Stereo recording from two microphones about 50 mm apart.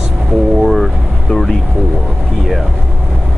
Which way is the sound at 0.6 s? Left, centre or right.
Centre.